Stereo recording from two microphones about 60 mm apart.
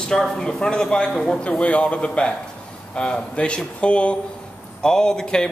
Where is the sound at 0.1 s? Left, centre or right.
Centre.